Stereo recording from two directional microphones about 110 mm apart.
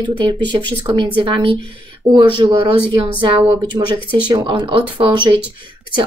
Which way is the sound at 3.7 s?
30° right (ahead or behind).